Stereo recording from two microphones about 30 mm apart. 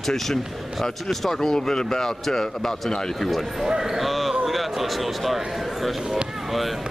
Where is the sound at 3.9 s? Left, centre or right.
Centre.